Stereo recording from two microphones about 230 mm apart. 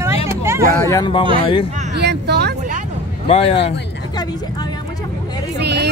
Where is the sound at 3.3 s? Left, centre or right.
Left.